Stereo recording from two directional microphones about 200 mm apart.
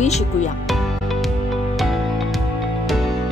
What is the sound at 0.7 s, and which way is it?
Music, centre (ahead or behind).